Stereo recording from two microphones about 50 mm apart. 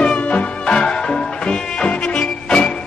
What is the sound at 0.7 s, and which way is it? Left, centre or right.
Music, centre.